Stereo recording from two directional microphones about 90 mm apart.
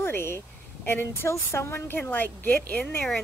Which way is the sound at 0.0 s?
30° left (ahead or behind).